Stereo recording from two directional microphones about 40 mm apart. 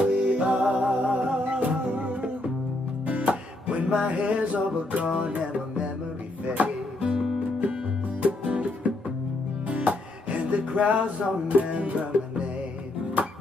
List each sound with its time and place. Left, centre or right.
0.0 s music: right
8.2 s music: right
13.2 s music: right